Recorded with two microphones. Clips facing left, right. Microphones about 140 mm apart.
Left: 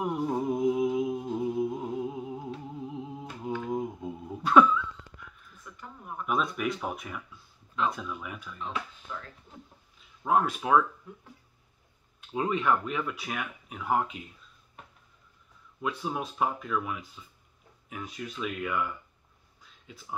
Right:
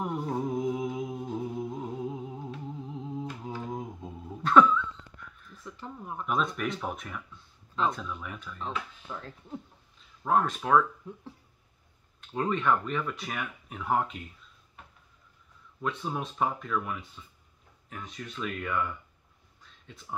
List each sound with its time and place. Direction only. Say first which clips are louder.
0.0 s music: left 2 dB; 5° left (ahead or behind)
2.9 s humming: right 2 dB; 10° left (ahead or behind)
3.7 s a sound: left 5 dB; 10° left (ahead or behind)
5.6 s a sound: right 5 dB; 25° right (ahead or behind)
6.2 s speech: left 1 dB; 5° left (ahead or behind)
8.5 s speech: right 1 dB; 30° right (ahead or behind)
9.9 s speech: even; 5° left (ahead or behind)
12.2 s speech: even; 10° left (ahead or behind)
15.8 s speech: left 1 dB; 5° left (ahead or behind)
19.6 s a sound: left 1 dB; 5° left (ahead or behind)